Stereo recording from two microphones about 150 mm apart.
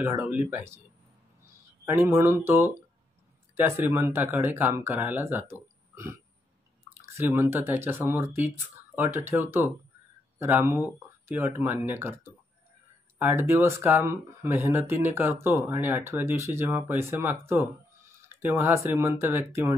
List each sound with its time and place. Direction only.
0.0 s speech: 10° right (ahead or behind)
1.9 s speech: 15° right (ahead or behind)
7.2 s speech: 15° right (ahead or behind)
13.2 s speech: 15° right (ahead or behind)